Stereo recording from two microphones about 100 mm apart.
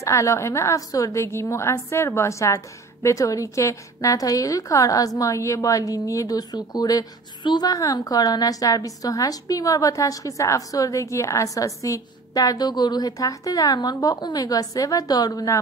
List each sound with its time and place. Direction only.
0.0 s a woman's voice: 30° left (ahead or behind)